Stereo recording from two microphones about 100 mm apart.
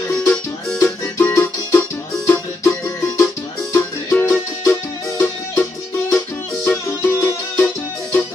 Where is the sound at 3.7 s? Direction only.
20° left (ahead or behind).